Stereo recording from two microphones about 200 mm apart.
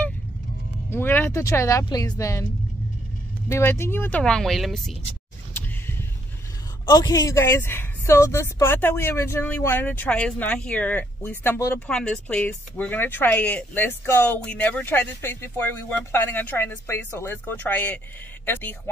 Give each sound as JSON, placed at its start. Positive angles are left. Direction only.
{"t": 0.8, "sound": "speech", "side_deg": 10}
{"t": 3.4, "sound": "speech", "side_deg": 15}
{"t": 6.9, "sound": "speech", "side_deg": 20}